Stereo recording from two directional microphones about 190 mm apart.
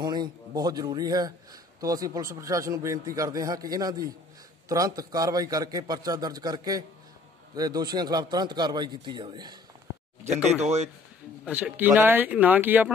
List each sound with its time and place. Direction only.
0.0 s a man's voice: 20° right (ahead or behind)
10.6 s speech: 35° right (ahead or behind)
11.4 s speech: 5° right (ahead or behind)